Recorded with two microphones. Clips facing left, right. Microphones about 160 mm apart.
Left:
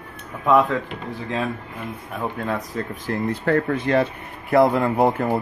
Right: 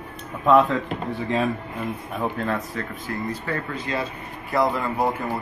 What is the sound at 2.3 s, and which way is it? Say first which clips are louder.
Speech: left 2 dB; 15° left (ahead or behind).